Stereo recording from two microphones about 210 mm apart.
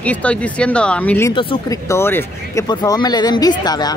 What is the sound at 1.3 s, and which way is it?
Speech, 25° left (ahead or behind).